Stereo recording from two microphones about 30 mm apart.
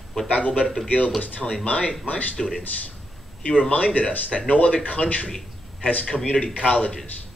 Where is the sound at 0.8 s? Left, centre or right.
Left.